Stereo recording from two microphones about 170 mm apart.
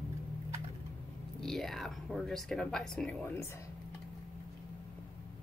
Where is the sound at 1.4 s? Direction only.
Centre (ahead or behind).